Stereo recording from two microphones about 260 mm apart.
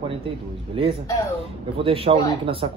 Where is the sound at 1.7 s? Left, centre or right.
Right.